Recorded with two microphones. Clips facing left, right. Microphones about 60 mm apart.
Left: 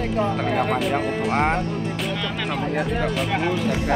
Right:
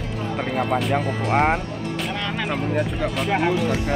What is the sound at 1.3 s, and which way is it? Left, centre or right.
Speech, centre.